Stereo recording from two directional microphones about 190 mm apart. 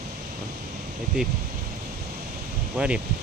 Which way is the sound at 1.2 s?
5° right (ahead or behind).